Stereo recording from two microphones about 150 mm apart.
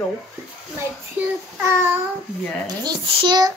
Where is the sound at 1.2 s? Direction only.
15° right (ahead or behind).